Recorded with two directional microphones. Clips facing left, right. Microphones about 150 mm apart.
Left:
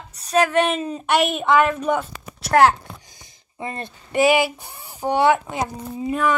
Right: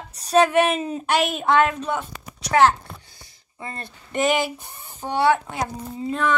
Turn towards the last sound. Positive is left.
turn(degrees=15)  # may be behind; listen again after turning